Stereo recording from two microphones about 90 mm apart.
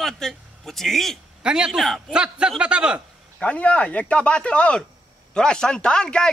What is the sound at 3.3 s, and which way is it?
Speech, 15° left (ahead or behind).